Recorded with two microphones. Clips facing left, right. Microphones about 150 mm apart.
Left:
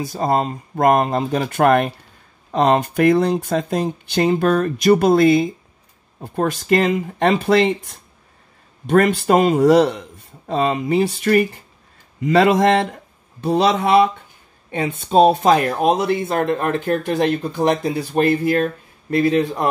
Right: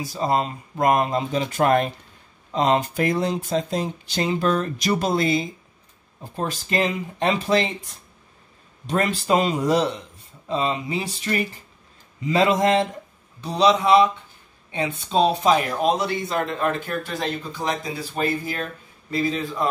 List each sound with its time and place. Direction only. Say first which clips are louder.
0.0 s speech: left 3 dB; 50° left (ahead or behind)
13.4 s speech: left 2 dB; 55° left (ahead or behind)